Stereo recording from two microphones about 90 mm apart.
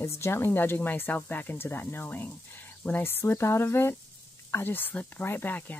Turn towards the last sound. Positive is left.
turn(degrees=20)  # may be behind; listen again after turning